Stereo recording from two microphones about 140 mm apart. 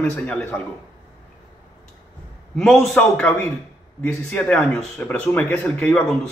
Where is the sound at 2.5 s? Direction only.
Centre (ahead or behind).